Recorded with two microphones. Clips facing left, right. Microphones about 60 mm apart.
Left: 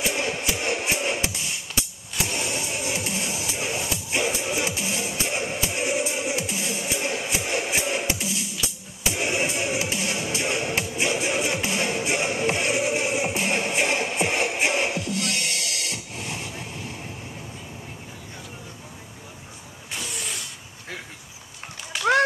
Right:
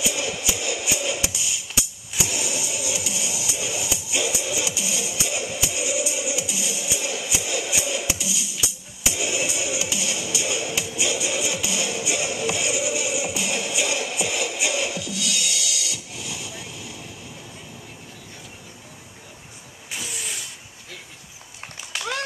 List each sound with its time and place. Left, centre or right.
0.0 s music: left
19.9 s vehicle: centre